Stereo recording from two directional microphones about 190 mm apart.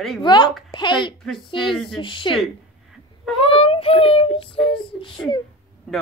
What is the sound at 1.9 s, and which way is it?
Speech, 25° left (ahead or behind).